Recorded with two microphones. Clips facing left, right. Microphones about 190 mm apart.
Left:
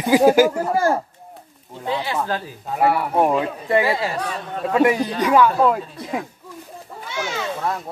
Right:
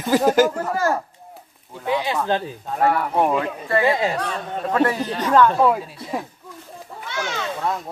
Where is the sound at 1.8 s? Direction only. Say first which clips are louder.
Right 2 dB; 15° right (ahead or behind).